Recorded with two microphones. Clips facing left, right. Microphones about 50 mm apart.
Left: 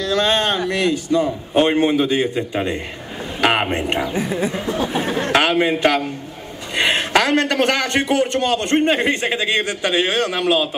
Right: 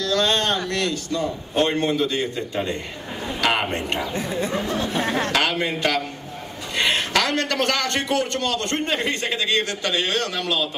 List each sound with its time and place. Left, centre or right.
0.1 s a man's voice: centre
4.1 s a man's voice: centre